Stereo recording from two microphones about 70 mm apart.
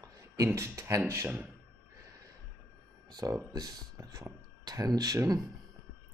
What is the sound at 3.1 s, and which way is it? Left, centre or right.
Speech, right.